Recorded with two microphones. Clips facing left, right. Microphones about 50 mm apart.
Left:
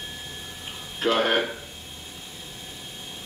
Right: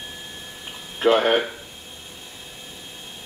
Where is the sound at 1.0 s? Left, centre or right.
Centre.